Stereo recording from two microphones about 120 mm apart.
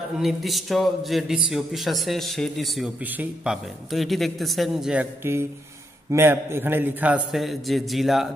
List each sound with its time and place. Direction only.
0.2 s a man's voice: centre (ahead or behind)
3.0 s a man's voice: 15° right (ahead or behind)
3.9 s a man's voice: centre (ahead or behind)
5.2 s a man's voice: 20° right (ahead or behind)
7.2 s a man's voice: centre (ahead or behind)